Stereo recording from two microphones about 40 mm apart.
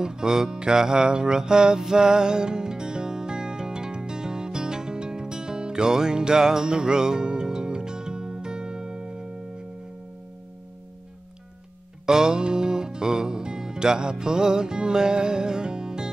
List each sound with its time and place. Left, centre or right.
0.0 s music: centre
12.1 s music: centre